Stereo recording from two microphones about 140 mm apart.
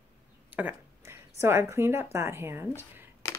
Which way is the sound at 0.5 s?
15° right (ahead or behind).